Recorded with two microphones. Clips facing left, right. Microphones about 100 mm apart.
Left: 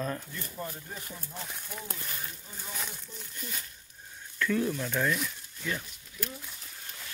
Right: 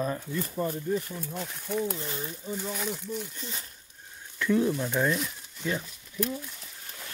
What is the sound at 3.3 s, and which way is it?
Speech, 25° right (ahead or behind).